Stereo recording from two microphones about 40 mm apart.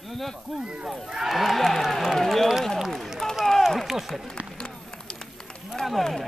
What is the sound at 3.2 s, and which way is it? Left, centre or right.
Run, centre.